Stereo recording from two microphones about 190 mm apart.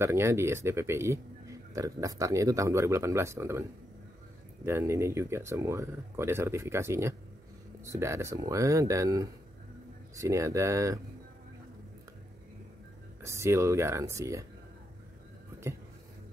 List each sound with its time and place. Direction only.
0.0 s speech: 15° right (ahead or behind)
4.6 s speech: 15° right (ahead or behind)
13.2 s speech: 15° right (ahead or behind)